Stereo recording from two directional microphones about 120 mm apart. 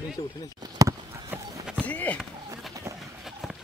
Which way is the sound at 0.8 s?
30° right (ahead or behind).